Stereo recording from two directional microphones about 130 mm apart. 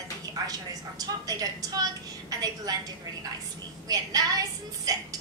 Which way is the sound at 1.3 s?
30° right (ahead or behind).